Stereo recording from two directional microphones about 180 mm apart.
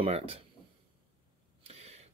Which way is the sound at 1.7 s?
35° right (ahead or behind).